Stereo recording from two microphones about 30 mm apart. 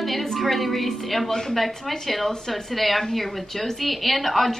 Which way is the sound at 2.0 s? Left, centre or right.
Centre.